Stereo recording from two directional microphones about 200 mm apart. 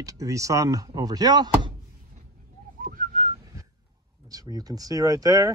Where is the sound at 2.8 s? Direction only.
45° right (ahead or behind).